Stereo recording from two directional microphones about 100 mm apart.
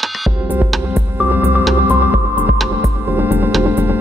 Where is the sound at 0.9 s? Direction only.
20° right (ahead or behind).